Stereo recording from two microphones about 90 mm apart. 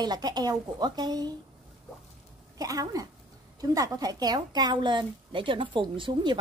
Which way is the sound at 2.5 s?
40° right (ahead or behind).